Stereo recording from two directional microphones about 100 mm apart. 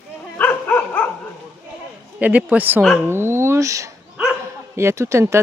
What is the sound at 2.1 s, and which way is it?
Speech, 15° right (ahead or behind).